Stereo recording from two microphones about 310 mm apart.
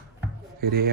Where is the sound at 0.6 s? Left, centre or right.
Right.